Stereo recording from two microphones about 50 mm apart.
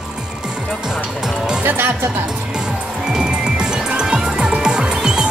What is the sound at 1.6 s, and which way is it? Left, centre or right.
Speech, right.